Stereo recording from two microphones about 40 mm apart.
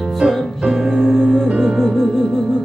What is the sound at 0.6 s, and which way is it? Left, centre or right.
Music, centre.